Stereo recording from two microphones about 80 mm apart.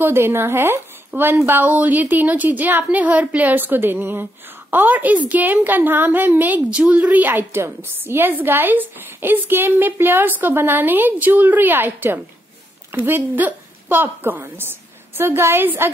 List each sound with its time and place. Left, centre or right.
0.0 s a woman's voice: right